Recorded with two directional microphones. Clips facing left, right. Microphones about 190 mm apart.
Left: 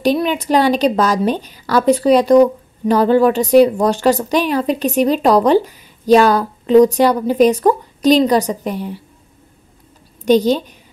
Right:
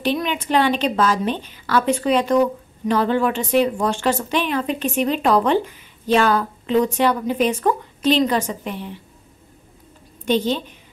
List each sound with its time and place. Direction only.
0.0 s a woman's voice: 40° left (ahead or behind)
10.2 s a woman's voice: 40° left (ahead or behind)